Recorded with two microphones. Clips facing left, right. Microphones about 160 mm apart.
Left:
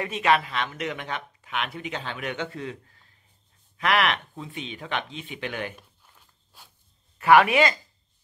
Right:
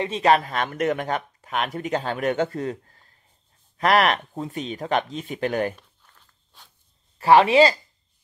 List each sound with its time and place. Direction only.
0.0 s speech: 35° right (ahead or behind)
5.8 s walk: 10° left (ahead or behind)
7.2 s speech: 30° right (ahead or behind)